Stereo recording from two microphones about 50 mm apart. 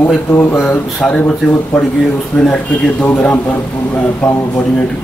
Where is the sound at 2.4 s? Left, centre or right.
Left.